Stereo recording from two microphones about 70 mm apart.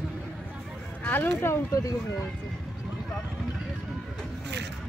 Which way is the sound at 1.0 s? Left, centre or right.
Left.